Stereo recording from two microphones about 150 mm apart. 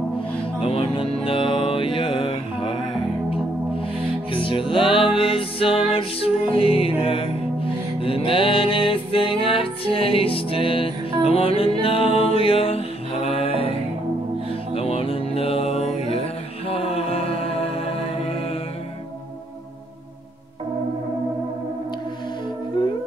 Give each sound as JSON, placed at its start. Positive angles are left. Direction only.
{"t": 0.6, "sound": "music", "side_deg": 40}
{"t": 4.3, "sound": "music", "side_deg": 35}
{"t": 14.7, "sound": "mantra", "side_deg": 40}
{"t": 22.8, "sound": "music", "side_deg": 30}